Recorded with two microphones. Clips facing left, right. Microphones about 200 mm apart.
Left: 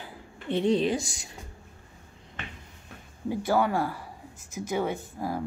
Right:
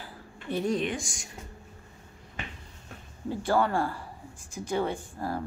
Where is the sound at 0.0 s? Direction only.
25° left (ahead or behind).